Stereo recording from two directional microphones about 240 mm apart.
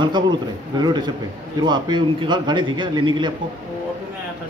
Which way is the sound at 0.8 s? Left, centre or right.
Centre.